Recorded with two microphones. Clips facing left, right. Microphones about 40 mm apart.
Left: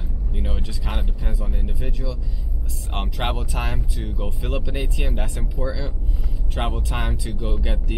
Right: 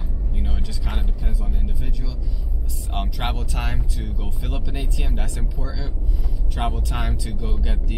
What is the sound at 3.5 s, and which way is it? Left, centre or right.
Speech, centre.